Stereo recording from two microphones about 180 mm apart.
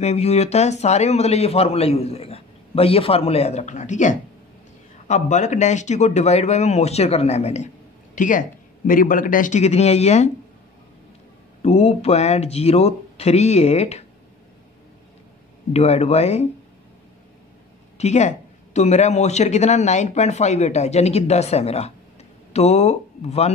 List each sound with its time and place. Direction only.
0.0 s speech: 35° left (ahead or behind)
11.6 s speech: 35° left (ahead or behind)
15.7 s speech: 35° left (ahead or behind)
17.9 s speech: 40° left (ahead or behind)